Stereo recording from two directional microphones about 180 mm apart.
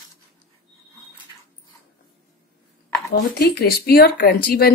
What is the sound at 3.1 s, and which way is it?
Speech, 60° left (ahead or behind).